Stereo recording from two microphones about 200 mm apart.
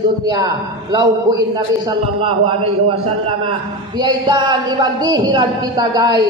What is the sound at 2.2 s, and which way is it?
Speech, 30° right (ahead or behind).